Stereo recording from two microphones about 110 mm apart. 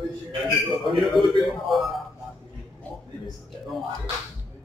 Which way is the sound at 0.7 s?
Centre (ahead or behind).